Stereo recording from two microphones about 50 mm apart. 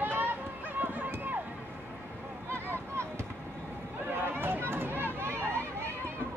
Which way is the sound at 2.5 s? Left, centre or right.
Right.